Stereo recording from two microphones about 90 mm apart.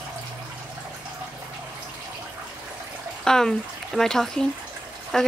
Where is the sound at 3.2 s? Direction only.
5° left (ahead or behind).